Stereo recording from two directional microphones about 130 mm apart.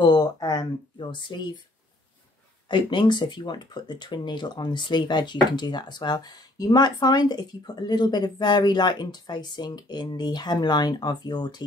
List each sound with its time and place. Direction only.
0.0 s speech: 30° left (ahead or behind)
2.7 s speech: 35° left (ahead or behind)